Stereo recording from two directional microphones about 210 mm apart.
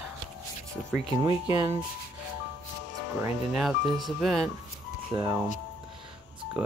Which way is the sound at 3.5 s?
Centre (ahead or behind).